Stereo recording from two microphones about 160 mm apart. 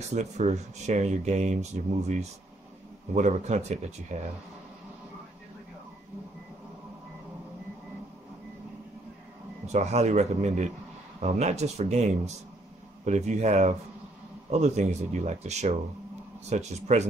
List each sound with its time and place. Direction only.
0.1 s speech: 45° right (ahead or behind)
9.7 s speech: 45° right (ahead or behind)